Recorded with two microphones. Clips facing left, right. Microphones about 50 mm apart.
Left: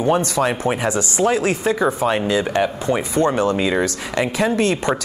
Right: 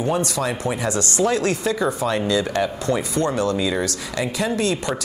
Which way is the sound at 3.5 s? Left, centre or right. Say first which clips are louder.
Left 3 dB; left.